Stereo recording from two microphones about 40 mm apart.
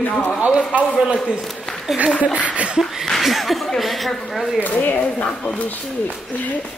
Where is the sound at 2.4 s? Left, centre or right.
Right.